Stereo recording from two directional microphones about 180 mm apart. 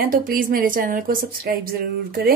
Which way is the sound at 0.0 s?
50° right (ahead or behind).